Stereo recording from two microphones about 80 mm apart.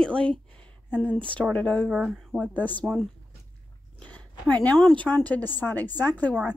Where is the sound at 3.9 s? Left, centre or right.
Centre.